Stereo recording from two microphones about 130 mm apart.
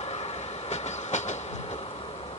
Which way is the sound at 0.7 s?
60° left (ahead or behind).